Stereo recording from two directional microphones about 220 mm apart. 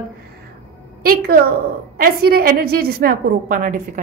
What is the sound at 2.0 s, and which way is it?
A woman's voice, 45° right (ahead or behind).